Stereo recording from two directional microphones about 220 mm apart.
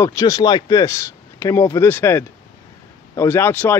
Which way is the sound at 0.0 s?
15° left (ahead or behind).